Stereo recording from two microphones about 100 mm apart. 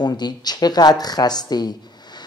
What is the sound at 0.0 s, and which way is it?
A woman's voice, 45° left (ahead or behind).